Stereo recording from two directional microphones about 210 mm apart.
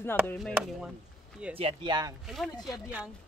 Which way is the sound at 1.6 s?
25° right (ahead or behind).